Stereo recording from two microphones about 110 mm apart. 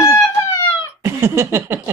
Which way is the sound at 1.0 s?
25° right (ahead or behind).